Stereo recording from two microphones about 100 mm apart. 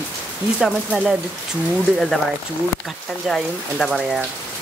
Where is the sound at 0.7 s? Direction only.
10° right (ahead or behind).